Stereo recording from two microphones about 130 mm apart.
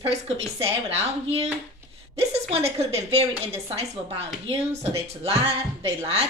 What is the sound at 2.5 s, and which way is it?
Speech, 50° right (ahead or behind).